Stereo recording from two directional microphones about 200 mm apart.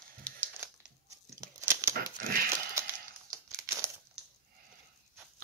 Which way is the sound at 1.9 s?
45° right (ahead or behind).